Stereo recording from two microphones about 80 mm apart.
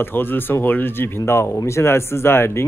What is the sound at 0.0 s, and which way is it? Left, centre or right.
Speech, left.